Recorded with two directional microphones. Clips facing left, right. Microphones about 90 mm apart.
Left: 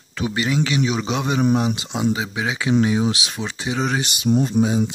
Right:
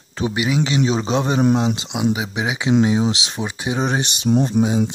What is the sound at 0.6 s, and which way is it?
Speech, 30° right (ahead or behind).